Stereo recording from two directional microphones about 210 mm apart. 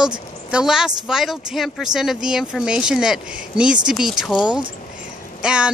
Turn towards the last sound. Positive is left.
turn(degrees=-5)  # may be behind; listen again after turning